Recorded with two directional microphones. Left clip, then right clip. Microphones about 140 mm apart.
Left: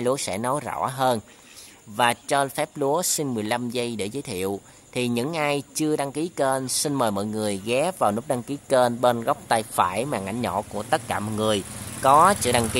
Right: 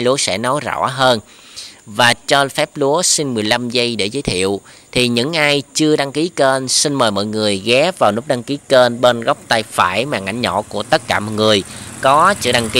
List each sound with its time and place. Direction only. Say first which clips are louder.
0.0 s speech: right 9 dB; 15° right (ahead or behind)
12.0 s speech: right 5 dB; 5° right (ahead or behind)